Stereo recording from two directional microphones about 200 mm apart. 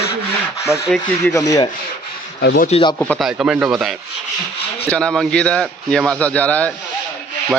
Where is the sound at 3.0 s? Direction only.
Centre (ahead or behind).